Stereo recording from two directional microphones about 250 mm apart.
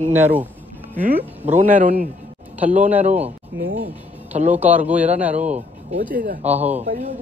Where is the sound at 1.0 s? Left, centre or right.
Right.